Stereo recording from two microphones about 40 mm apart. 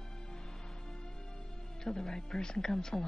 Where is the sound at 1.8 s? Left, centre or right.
Centre.